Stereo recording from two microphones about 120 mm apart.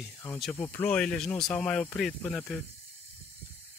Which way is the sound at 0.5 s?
15° left (ahead or behind).